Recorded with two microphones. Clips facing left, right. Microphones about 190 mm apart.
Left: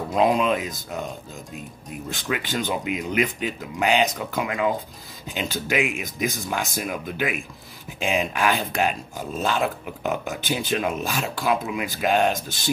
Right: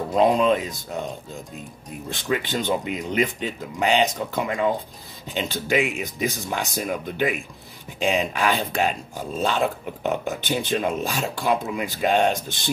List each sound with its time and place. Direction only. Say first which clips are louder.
0.1 s speech: right 2 dB; 5° left (ahead or behind)
2.0 s speech: right 3 dB; centre (ahead or behind)